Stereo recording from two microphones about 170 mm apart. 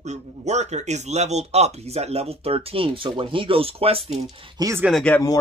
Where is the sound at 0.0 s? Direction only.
40° right (ahead or behind).